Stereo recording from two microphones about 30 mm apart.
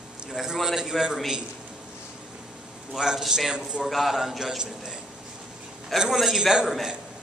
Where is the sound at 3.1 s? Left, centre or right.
Centre.